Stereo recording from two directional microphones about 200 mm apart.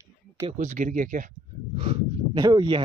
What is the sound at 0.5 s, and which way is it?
Speech, 40° right (ahead or behind).